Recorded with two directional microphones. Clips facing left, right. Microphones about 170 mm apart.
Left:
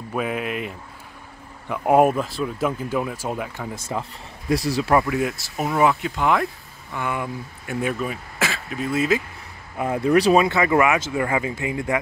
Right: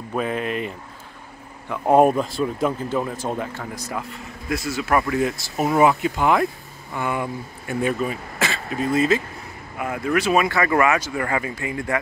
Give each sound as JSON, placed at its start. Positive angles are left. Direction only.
{"t": 0.1, "sound": "speech", "side_deg": 5}
{"t": 3.7, "sound": "speech", "side_deg": 25}
{"t": 5.0, "sound": "speech", "side_deg": 5}
{"t": 5.7, "sound": "speech", "side_deg": -5}
{"t": 9.8, "sound": "speech", "side_deg": 30}